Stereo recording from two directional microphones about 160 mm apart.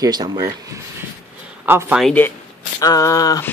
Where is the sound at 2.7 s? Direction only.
20° left (ahead or behind).